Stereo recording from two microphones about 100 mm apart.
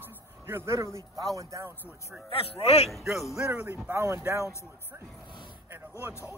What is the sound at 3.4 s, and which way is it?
A man's voice, 15° right (ahead or behind).